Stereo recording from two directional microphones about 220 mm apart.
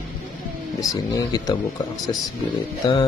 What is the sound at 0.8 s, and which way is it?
Speech, 15° left (ahead or behind).